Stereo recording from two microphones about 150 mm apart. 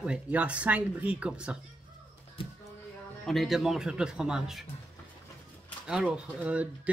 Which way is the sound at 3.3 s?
Centre (ahead or behind).